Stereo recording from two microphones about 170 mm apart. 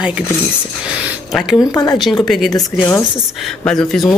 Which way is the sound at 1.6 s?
20° left (ahead or behind).